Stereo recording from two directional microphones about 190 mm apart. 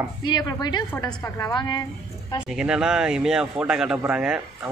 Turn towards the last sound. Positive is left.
turn(degrees=-5)  # may be behind; listen again after turning